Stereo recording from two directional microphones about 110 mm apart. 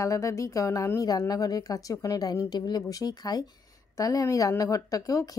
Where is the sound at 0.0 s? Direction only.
30° left (ahead or behind).